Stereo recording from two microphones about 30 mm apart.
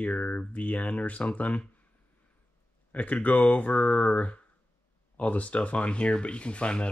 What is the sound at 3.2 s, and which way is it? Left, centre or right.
Speech, left.